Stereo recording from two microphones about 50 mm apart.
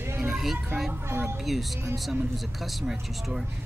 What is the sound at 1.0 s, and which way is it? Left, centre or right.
Speech, right.